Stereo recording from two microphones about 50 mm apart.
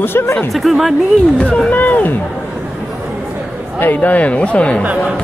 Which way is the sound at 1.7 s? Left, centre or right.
Left.